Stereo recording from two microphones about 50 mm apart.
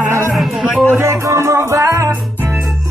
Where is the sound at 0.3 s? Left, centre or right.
Centre.